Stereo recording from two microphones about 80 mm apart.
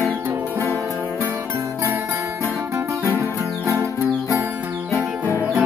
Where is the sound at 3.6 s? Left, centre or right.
Right.